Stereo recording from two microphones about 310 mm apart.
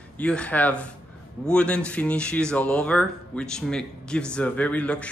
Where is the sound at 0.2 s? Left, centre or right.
Centre.